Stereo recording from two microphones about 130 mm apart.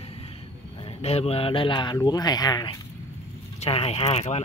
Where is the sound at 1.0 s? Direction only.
50° left (ahead or behind); by 2.7 s 30° left (ahead or behind).